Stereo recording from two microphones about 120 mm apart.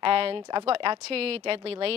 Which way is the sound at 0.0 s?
50° right (ahead or behind).